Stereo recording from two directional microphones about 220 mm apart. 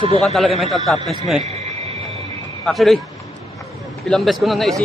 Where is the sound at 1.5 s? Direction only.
30° right (ahead or behind).